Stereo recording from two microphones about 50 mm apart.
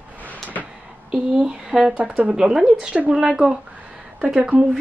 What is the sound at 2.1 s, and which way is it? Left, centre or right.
Speech, right.